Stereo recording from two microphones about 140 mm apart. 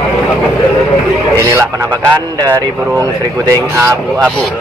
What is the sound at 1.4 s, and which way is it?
Speech, 20° right (ahead or behind).